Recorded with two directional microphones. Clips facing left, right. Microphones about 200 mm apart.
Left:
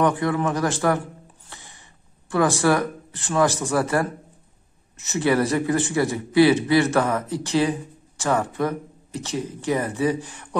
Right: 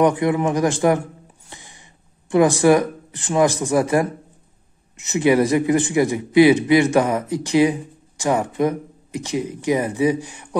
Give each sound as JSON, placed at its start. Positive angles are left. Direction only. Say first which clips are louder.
{"t": 0.0, "sound": "a man's voice", "louder": "right 4 dB", "side_deg": -15}